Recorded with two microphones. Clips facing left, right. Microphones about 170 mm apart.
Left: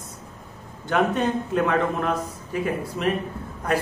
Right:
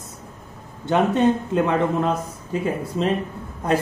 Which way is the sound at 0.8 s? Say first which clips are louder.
Right 4 dB; 25° right (ahead or behind).